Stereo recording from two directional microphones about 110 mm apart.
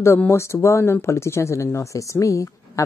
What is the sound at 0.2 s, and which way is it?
Speech, 25° left (ahead or behind).